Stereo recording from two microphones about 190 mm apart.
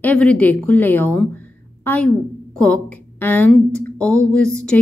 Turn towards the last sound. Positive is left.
turn(degrees=5)  # may be behind; listen again after turning